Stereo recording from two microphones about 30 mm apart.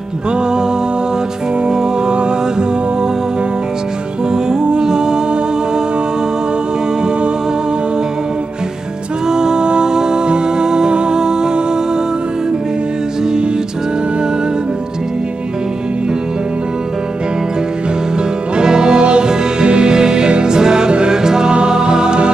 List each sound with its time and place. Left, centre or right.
1.7 s music: right
4.3 s humming: right
9.3 s music: right
18.6 s music: right